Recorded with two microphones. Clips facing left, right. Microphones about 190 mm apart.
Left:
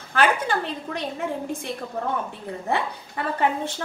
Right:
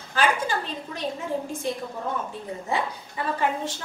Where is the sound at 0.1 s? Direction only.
60° left (ahead or behind).